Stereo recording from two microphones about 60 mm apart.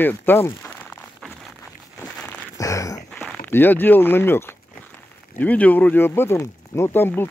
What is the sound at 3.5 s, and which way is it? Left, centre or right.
Speech, left.